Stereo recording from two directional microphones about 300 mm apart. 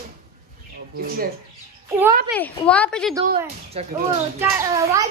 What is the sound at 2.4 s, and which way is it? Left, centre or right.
Speech, centre.